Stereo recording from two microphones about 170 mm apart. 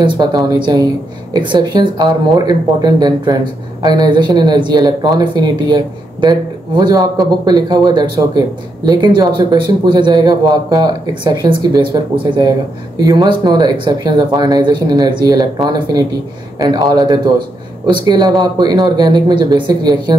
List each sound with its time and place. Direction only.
0.0 s a man's voice: 25° right (ahead or behind)
13.0 s a man's voice: 20° right (ahead or behind)
16.5 s a man's voice: 20° right (ahead or behind)